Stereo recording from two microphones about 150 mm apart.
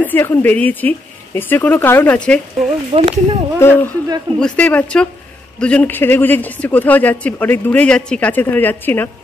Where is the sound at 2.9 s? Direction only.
40° right (ahead or behind).